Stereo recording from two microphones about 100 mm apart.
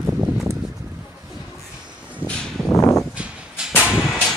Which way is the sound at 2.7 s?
35° left (ahead or behind).